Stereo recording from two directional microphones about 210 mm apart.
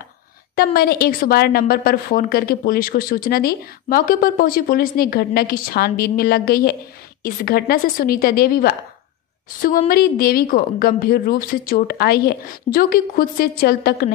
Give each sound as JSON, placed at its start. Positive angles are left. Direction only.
{"t": 0.7, "sound": "a woman's voice", "side_deg": 45}